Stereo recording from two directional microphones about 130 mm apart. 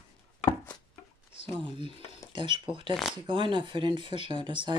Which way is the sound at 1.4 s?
40° right (ahead or behind).